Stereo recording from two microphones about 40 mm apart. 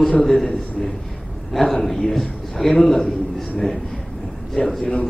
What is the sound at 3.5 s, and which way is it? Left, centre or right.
Speech, centre.